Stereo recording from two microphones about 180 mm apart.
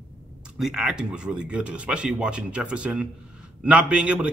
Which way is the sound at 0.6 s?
5° right (ahead or behind).